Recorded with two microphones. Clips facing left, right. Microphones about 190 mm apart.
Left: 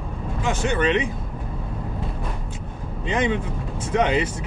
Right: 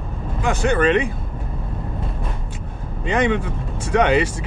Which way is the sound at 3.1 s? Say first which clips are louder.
Right 3 dB; 60° right (ahead or behind).